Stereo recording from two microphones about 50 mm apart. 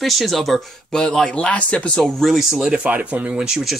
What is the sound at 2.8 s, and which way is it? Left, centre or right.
Speech, right.